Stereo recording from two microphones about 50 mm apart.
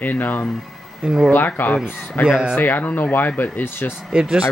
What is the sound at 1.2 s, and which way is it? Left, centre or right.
Speech, left.